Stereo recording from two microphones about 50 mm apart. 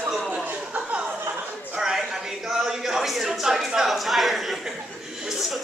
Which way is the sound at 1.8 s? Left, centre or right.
Centre.